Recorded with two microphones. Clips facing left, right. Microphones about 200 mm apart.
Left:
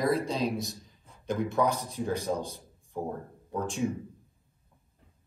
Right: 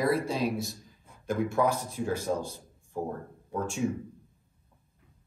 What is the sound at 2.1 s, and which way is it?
Speech, 15° left (ahead or behind).